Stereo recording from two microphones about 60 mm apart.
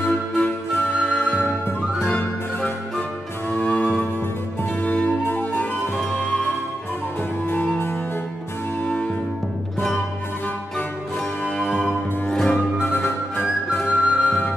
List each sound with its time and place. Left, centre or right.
0.0 s music: left
8.8 s music: centre
9.8 s music: centre
11.4 s music: left
12.8 s music: left
13.8 s flute: left